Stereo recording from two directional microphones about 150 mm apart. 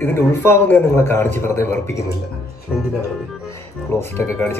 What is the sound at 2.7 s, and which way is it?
Music, 5° right (ahead or behind).